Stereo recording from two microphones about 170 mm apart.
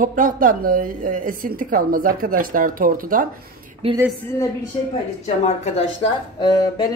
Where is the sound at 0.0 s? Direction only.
50° right (ahead or behind).